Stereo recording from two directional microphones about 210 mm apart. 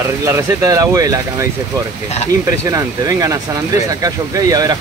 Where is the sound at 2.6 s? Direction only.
15° right (ahead or behind).